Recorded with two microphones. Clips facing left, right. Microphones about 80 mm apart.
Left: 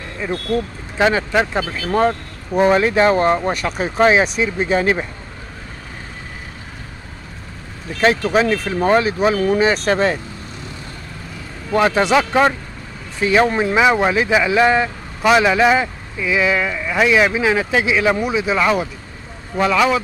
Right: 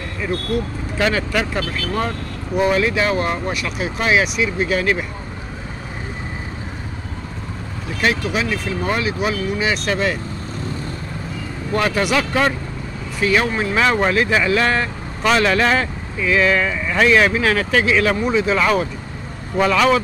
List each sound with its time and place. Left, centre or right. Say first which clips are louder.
0.9 s speech: left 4 dB; left
2.0 s speech: left 10 dB; left
8.3 s speech: left 5 dB; left
11.7 s speech: left 4 dB; left; by 20.0 s centre